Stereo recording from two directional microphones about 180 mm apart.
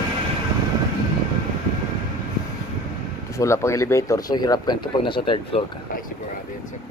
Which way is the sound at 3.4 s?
15° left (ahead or behind).